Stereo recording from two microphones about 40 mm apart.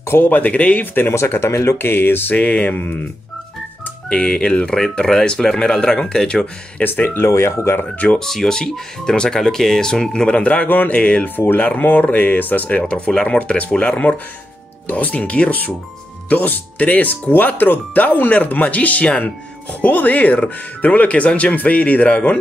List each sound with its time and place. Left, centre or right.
0.2 s speech: left
0.9 s speech: left
2.3 s speech: left
4.1 s speech: left
6.8 s speech: left
8.2 s speech: centre
10.3 s speech: left
11.3 s speech: left
12.6 s speech: left
13.6 s speech: left